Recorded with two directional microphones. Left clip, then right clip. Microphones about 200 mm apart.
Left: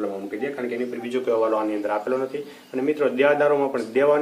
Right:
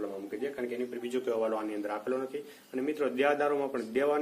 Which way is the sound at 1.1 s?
50° right (ahead or behind).